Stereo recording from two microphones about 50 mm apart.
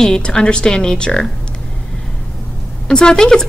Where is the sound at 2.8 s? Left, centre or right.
Centre.